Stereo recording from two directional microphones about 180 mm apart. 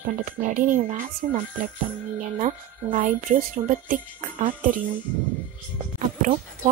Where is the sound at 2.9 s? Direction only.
45° right (ahead or behind).